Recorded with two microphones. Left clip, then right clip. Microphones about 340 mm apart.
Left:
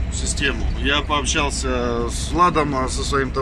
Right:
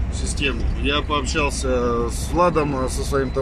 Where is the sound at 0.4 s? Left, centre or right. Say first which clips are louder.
Left 1 dB; centre.